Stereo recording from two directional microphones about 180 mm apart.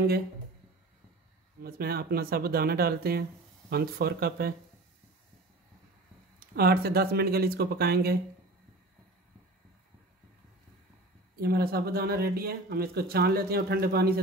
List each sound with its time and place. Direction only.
1.6 s speech: 60° right (ahead or behind)
6.5 s speech: 60° right (ahead or behind)
11.3 s speech: 55° right (ahead or behind)